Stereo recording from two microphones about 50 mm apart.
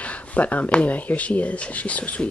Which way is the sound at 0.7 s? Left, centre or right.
Left.